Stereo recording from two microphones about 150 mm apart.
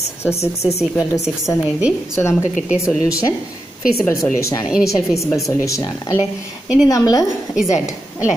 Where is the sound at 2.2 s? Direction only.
20° left (ahead or behind).